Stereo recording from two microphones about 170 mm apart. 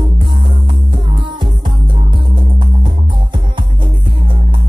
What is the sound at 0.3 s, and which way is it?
Music, 30° right (ahead or behind).